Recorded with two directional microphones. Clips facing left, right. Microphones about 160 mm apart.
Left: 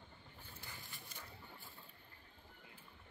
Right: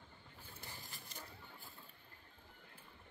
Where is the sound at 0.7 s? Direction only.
40° right (ahead or behind).